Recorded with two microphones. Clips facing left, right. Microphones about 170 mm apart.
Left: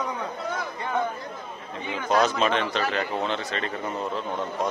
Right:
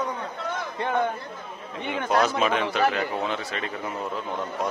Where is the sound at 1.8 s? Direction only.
60° right (ahead or behind).